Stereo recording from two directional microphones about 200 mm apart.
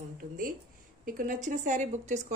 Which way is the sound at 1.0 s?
40° right (ahead or behind).